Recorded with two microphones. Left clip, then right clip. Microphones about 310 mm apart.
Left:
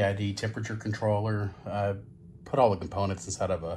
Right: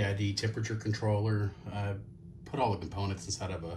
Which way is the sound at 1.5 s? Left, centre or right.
Centre.